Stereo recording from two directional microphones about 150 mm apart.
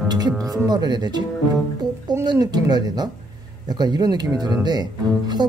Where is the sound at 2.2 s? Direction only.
25° right (ahead or behind).